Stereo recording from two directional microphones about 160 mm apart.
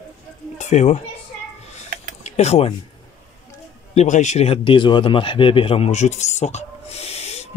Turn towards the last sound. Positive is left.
turn(degrees=40)  # may be behind; listen again after turning